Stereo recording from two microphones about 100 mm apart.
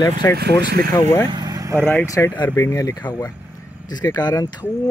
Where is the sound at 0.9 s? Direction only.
25° left (ahead or behind).